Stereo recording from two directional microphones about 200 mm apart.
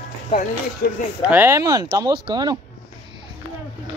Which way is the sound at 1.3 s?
10° right (ahead or behind).